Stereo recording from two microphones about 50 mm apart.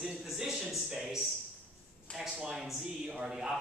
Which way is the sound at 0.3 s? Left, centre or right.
Centre.